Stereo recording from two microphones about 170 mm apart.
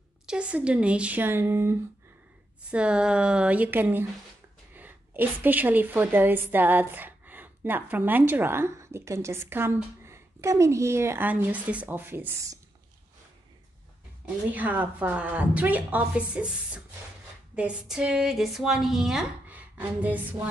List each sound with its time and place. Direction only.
0.3 s a woman's voice: 5° right (ahead or behind)
14.2 s a woman's voice: 10° right (ahead or behind)